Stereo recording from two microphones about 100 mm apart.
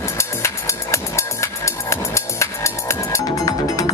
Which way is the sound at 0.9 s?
30° left (ahead or behind).